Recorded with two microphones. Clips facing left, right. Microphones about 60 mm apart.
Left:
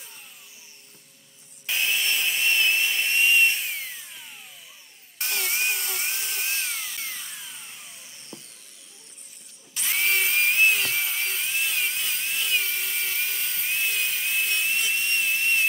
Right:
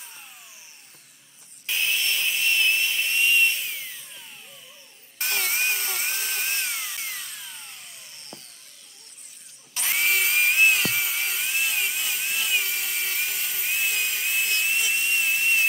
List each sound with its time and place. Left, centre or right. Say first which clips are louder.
1.9 s sawing: even; centre
3.3 s tools: left 1 dB; centre
5.4 s dental drill: right 1 dB; centre; by 6.6 s right
6.6 s a sound: right 1 dB; centre
7.2 s vacuum cleaner: right 1 dB; centre
9.8 s dental drill: right 1 dB; centre